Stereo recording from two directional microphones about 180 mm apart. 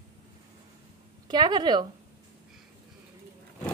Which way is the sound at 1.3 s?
25° right (ahead or behind).